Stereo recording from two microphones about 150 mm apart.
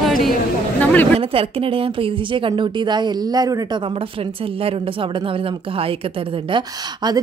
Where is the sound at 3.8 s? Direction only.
35° right (ahead or behind).